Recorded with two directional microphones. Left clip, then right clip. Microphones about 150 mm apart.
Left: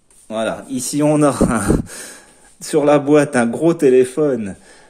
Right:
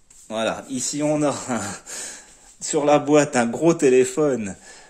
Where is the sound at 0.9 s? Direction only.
25° left (ahead or behind).